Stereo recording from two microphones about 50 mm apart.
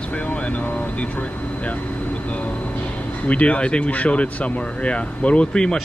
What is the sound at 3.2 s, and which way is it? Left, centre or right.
Speech, left.